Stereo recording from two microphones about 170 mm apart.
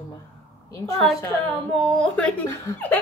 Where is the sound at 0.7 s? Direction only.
20° left (ahead or behind).